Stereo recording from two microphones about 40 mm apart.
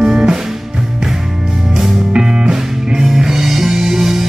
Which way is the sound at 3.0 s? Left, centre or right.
Centre.